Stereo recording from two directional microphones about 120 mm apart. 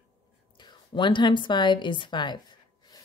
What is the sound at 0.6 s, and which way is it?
A woman's voice, 40° left (ahead or behind).